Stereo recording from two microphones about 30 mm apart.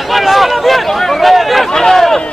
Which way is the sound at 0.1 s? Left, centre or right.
Centre.